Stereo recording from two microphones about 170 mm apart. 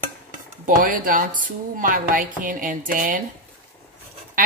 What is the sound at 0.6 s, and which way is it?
A woman's voice, 50° right (ahead or behind).